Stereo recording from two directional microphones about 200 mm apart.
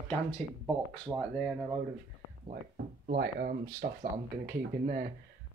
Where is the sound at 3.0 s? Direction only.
50° right (ahead or behind).